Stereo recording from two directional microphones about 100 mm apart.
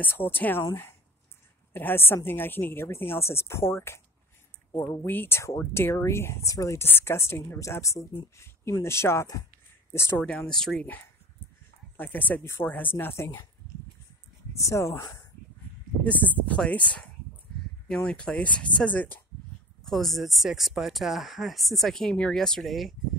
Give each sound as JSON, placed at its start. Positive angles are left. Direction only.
{"t": 0.0, "sound": "speech", "side_deg": 20}
{"t": 1.7, "sound": "speech", "side_deg": 20}
{"t": 5.0, "sound": "speech", "side_deg": 20}
{"t": 10.2, "sound": "speech", "side_deg": 10}
{"t": 12.0, "sound": "speech", "side_deg": 15}
{"t": 14.6, "sound": "speech", "side_deg": 30}
{"t": 16.0, "sound": "speech", "side_deg": 15}
{"t": 19.8, "sound": "speech", "side_deg": 5}